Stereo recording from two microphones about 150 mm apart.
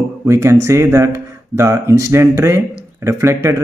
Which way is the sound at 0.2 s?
20° right (ahead or behind).